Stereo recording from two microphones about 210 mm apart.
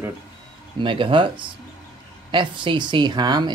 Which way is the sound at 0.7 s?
25° right (ahead or behind).